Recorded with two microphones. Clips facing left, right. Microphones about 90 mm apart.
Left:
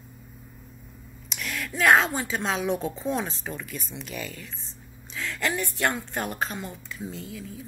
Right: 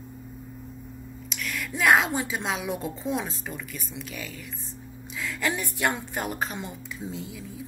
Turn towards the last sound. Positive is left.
turn(degrees=-15)  # may be behind; listen again after turning